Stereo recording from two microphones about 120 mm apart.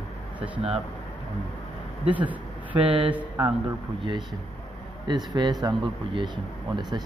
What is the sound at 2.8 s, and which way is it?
Speech, 45° right (ahead or behind).